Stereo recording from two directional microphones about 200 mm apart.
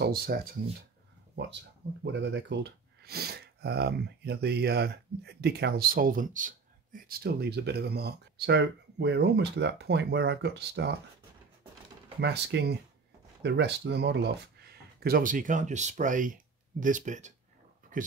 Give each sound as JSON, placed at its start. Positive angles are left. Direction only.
{"t": 0.0, "sound": "speech", "side_deg": -50}
{"t": 12.2, "sound": "speech", "side_deg": -60}